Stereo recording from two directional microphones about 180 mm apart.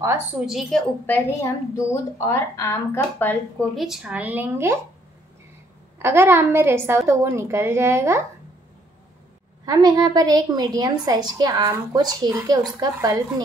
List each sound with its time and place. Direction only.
0.5 s a woman's voice: centre (ahead or behind)
5.9 s speech: 15° right (ahead or behind)
9.7 s a woman's voice: 20° right (ahead or behind)